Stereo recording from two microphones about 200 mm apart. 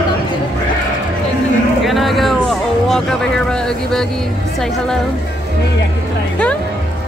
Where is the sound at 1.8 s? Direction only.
Centre (ahead or behind).